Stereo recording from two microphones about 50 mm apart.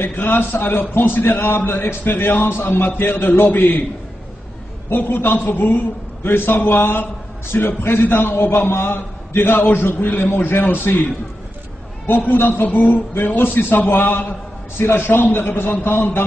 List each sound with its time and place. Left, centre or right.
0.0 s a man's voice: left
4.8 s a man's voice: left
12.1 s a man's voice: left